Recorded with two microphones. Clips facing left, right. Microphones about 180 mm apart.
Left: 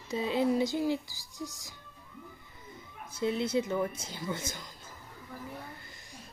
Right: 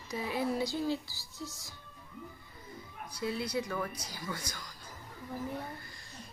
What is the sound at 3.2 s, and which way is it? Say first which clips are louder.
Speech: left 5 dB; 25° left (ahead or behind).